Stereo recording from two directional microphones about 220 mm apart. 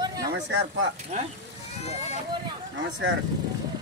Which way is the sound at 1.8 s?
30° left (ahead or behind).